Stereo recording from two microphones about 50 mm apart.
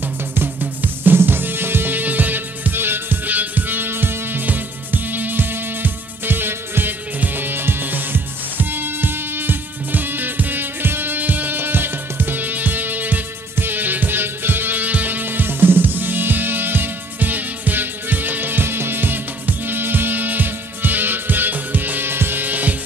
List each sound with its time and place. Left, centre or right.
0.3 s drum kit: right
7.2 s music: right